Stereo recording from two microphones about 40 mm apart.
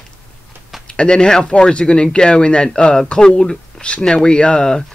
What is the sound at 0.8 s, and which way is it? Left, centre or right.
Speech, left.